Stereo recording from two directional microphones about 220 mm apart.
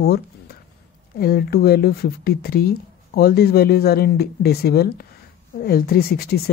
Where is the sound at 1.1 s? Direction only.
45° left (ahead or behind).